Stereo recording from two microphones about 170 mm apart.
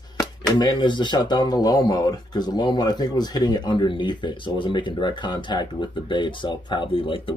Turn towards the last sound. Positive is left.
turn(degrees=30)  # may be behind; listen again after turning